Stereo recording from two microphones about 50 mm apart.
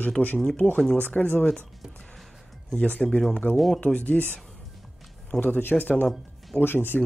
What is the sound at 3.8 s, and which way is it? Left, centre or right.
Speech, left.